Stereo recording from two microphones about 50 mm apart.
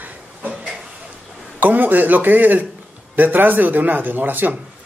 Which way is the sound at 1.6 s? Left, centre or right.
Right.